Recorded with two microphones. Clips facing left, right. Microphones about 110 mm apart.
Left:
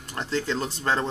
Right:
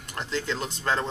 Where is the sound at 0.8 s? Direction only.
30° left (ahead or behind).